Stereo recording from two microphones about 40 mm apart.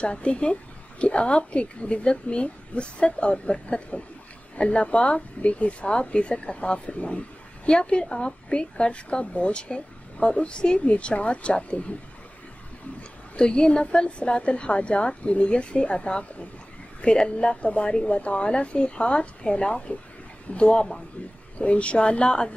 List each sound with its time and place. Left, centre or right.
0.0 s a woman's voice: left
13.4 s a woman's voice: left